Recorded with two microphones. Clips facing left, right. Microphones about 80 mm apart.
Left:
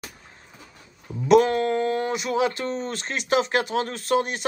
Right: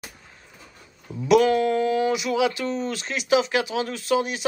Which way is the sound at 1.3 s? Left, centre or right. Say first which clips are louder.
Even; left.